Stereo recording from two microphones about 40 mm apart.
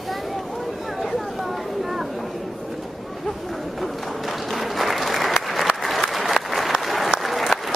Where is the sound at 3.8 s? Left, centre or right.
Centre.